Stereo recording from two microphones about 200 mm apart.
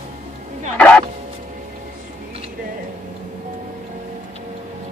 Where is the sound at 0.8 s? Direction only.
5° left (ahead or behind).